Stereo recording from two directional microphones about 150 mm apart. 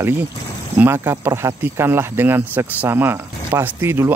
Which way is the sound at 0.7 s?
15° right (ahead or behind).